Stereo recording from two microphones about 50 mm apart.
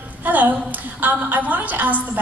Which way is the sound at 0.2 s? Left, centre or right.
Right.